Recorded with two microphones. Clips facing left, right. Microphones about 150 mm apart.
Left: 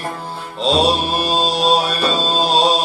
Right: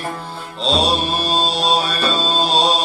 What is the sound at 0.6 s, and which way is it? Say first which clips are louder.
Mantra: left 3 dB; 10° left (ahead or behind).